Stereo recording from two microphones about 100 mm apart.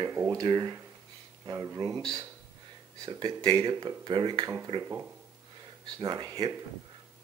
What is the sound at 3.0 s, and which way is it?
Speech, 45° right (ahead or behind).